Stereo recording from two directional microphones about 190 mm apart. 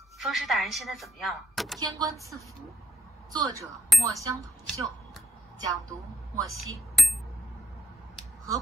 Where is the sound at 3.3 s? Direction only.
20° right (ahead or behind).